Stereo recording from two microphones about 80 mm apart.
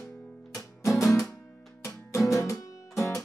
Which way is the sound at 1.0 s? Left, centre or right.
Left.